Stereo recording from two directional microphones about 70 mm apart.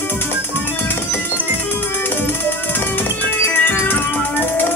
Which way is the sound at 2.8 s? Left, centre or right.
Left.